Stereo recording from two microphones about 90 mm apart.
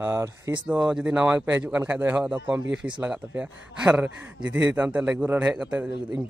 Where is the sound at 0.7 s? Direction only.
10° right (ahead or behind).